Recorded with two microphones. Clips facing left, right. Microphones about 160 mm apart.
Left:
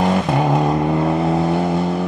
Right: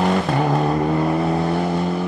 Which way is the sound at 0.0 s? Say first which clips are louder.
Left 2 dB; 15° left (ahead or behind).